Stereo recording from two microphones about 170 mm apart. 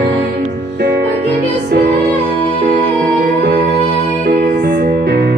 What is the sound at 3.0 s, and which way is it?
Music, 75° right (ahead or behind).